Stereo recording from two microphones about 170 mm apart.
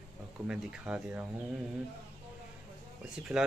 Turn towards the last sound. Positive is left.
turn(degrees=0)  # may be behind; listen again after turning